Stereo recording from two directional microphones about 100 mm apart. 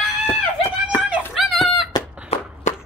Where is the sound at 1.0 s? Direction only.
10° right (ahead or behind).